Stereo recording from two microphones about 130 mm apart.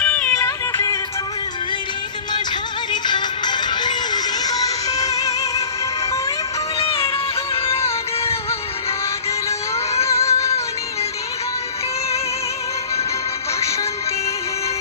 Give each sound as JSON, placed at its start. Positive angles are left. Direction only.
{"t": 0.0, "sound": "music", "side_deg": 10}
{"t": 0.4, "sound": "music", "side_deg": 25}
{"t": 2.9, "sound": "music", "side_deg": 35}
{"t": 6.8, "sound": "music", "side_deg": 45}
{"t": 10.0, "sound": "music", "side_deg": 20}